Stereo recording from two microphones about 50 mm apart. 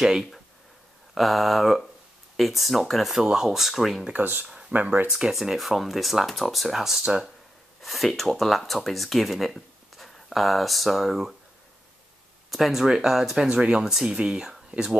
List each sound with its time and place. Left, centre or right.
0.0 s speech: centre
4.1 s speech: right
4.5 s a sound: centre
4.7 s speech: right
5.1 s speech: centre
7.8 s speech: centre
12.4 s speech: centre
13.5 s speech: right
13.8 s speech: centre